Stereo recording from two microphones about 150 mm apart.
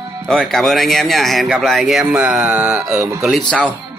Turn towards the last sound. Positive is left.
turn(degrees=5)  # may be behind; listen again after turning